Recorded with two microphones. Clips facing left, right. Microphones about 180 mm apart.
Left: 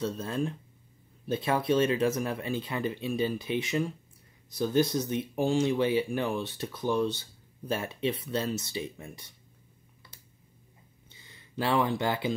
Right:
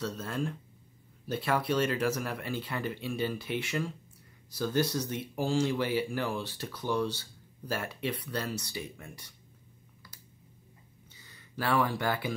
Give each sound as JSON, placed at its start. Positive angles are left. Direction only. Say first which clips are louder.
{"t": 0.0, "sound": "speech", "louder": "left 3 dB", "side_deg": 20}
{"t": 11.1, "sound": "speech", "louder": "left 4 dB", "side_deg": 20}